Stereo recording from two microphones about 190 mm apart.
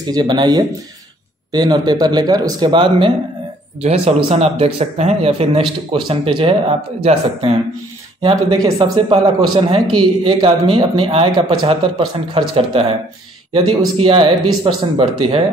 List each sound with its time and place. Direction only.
0.0 s speech: 20° right (ahead or behind)